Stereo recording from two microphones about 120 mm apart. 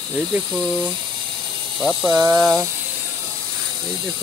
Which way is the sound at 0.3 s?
Centre (ahead or behind).